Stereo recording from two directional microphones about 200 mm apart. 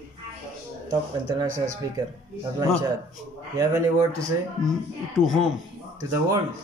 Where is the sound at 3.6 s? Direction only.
15° right (ahead or behind).